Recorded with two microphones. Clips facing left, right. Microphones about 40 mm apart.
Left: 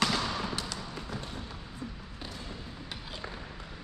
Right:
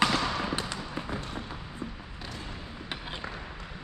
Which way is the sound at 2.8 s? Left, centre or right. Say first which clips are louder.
Right 7 dB; right.